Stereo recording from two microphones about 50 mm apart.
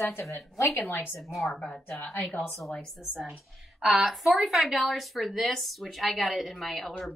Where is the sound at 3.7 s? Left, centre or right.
Centre.